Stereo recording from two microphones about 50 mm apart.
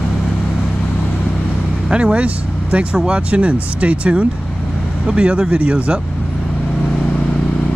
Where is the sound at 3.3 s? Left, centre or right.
Right.